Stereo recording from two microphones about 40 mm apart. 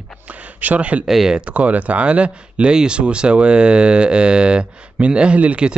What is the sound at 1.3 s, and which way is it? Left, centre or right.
Speech, right.